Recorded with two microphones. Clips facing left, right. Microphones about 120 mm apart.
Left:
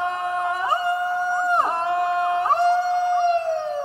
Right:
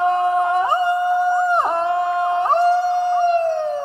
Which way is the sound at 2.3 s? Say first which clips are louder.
Right 3 dB; 25° right (ahead or behind).